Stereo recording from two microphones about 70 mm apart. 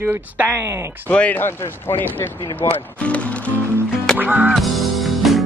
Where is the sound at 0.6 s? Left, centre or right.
Right.